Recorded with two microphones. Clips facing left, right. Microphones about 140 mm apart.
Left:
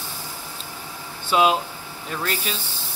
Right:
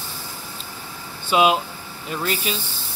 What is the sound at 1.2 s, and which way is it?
Speech, 5° right (ahead or behind).